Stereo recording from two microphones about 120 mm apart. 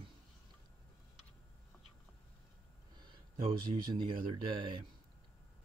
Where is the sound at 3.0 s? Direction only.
40° right (ahead or behind).